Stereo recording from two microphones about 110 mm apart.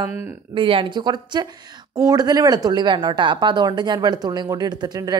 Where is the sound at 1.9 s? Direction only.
30° right (ahead or behind).